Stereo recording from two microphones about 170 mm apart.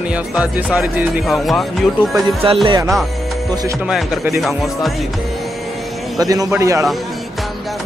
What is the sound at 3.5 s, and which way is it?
Speech, 20° right (ahead or behind).